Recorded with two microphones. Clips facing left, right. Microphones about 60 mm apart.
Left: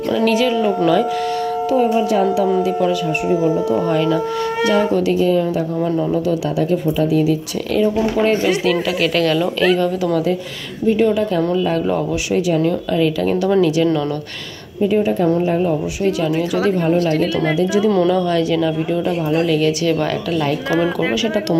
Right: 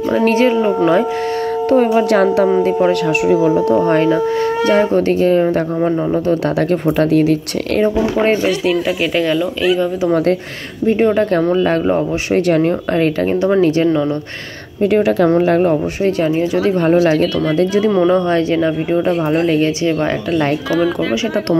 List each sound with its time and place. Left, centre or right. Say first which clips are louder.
0.1 s a woman's voice: right 3 dB; right
1.7 s speech: right 4 dB; right
2.4 s a woman's voice: right 3 dB; right
6.7 s speech: right 3 dB; right
8.6 s speech: right 1 dB; right
10.9 s a woman's voice: right 2 dB; right
12.4 s speech: right 3 dB; right
13.3 s a woman's voice: right 3 dB; right
14.8 s speech: right 3 dB; right
16.0 s a woman's voice: right 3 dB; right
16.8 s speech: right 4 dB; right
17.9 s a woman's voice: right 3 dB; right